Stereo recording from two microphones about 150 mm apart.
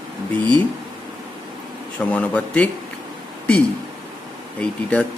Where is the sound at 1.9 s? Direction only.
10° left (ahead or behind).